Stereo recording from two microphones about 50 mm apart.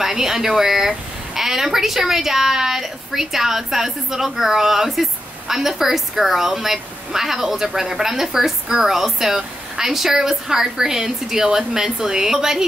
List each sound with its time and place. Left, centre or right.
0.0 s a woman's voice: centre